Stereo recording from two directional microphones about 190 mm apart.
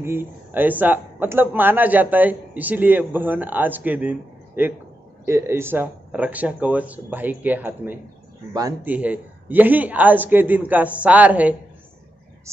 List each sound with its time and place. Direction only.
0.0 s speech: 10° right (ahead or behind)
8.9 s speech: 5° right (ahead or behind)